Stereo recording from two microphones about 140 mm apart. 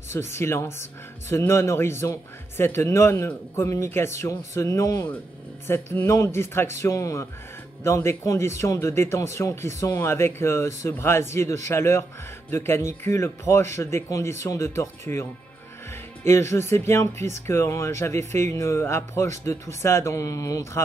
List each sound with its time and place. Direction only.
0.1 s speech: 20° left (ahead or behind)
16.3 s speech: 20° left (ahead or behind)